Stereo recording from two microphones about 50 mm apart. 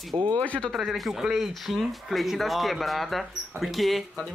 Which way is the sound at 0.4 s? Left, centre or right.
Left.